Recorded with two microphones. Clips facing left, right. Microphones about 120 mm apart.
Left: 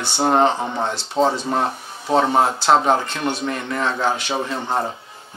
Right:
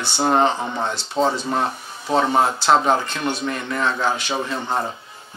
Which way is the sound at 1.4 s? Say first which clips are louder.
Left 1 dB; 35° left (ahead or behind).